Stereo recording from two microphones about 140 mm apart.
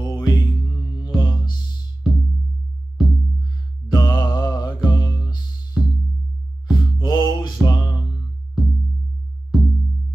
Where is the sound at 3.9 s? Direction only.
25° left (ahead or behind).